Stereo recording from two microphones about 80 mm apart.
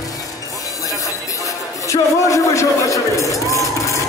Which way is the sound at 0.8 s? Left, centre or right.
Left.